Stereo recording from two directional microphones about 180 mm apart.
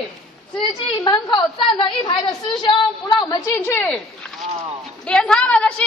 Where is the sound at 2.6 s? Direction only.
25° left (ahead or behind).